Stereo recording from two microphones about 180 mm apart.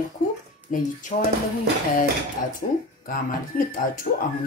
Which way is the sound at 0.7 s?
50° left (ahead or behind).